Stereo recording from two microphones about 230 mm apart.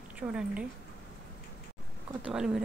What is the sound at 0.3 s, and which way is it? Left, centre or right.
Speech, centre.